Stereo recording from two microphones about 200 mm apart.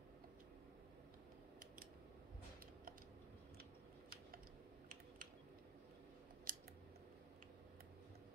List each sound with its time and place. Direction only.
6.5 s scissors: 45° right (ahead or behind)